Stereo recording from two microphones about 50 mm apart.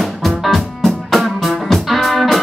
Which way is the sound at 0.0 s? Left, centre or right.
Centre.